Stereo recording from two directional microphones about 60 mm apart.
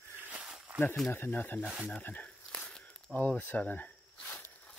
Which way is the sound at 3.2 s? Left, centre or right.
Left.